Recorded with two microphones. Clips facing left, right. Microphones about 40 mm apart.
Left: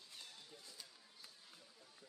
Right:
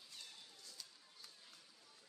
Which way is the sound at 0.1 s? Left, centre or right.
Centre.